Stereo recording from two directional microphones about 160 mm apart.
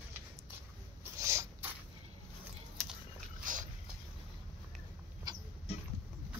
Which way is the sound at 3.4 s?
55° right (ahead or behind).